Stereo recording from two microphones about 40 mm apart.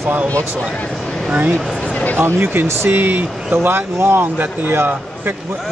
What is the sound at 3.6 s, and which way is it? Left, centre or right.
Speech, right.